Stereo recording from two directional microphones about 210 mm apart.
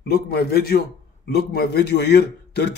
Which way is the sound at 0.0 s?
50° left (ahead or behind).